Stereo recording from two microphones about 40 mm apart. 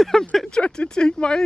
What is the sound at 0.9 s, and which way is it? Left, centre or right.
Speech, left.